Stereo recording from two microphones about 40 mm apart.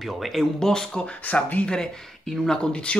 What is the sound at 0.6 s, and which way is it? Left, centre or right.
Speech, centre.